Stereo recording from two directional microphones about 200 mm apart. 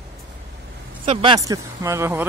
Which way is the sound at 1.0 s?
25° right (ahead or behind).